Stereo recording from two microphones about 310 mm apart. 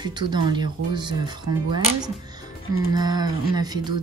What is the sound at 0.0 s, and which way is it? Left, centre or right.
Speech, centre.